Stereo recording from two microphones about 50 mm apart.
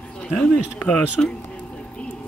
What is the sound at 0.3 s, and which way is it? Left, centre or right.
Speech, centre.